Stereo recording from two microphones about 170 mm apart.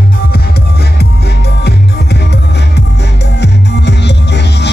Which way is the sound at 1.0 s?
75° left (ahead or behind).